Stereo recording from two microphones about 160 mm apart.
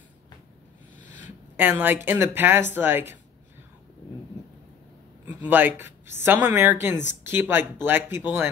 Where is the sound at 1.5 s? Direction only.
15° right (ahead or behind).